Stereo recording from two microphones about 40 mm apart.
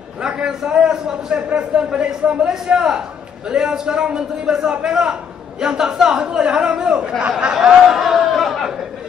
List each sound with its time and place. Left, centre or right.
0.7 s a man's voice: centre
7.5 s chatter: centre